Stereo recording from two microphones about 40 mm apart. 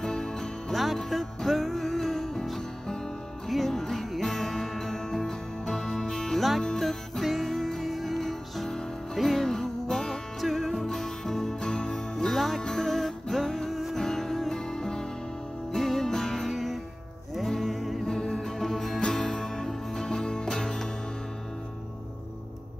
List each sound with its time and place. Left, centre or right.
0.0 s music: centre
3.4 s music: centre
6.8 s music: centre
12.3 s jingle bell: centre
12.6 s music: centre
15.7 s music: centre
18.0 s music: centre